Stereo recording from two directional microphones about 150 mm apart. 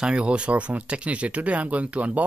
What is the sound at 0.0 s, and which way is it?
Speech, 5° right (ahead or behind).